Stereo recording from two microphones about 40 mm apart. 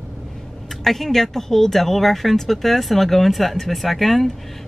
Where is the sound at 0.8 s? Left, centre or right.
Centre.